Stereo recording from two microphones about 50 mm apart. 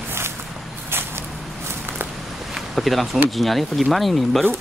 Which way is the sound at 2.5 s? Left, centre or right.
Centre.